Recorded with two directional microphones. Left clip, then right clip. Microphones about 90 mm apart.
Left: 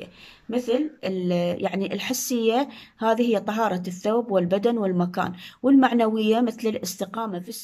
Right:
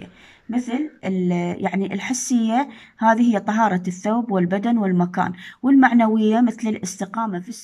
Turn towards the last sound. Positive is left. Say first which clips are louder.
# right 4 dB
turn(degrees=30)  # may be behind; listen again after turning